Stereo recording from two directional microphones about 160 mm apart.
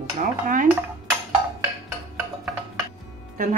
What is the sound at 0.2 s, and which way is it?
Speech, 60° right (ahead or behind).